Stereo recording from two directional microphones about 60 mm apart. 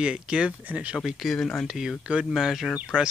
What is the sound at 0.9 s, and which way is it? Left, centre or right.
Speech, centre.